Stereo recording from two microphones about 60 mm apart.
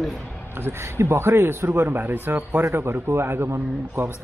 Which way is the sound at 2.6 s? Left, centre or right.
Right.